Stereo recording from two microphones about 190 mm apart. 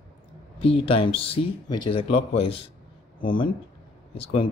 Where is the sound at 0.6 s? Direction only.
30° left (ahead or behind).